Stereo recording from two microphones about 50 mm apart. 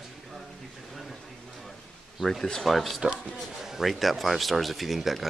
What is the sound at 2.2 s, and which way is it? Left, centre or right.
Speech, centre.